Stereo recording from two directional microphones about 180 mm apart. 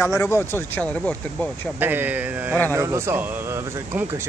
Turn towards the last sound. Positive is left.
turn(degrees=-15)  # may be behind; listen again after turning